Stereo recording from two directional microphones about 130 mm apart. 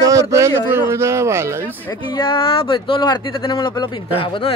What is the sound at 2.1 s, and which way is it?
Speech, 40° left (ahead or behind).